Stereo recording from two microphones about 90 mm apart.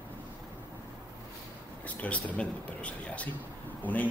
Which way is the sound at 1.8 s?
15° left (ahead or behind).